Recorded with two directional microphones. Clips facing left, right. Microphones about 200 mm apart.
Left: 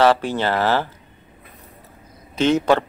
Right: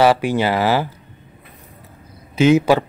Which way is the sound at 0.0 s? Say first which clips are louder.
Right 2 dB; 10° right (ahead or behind).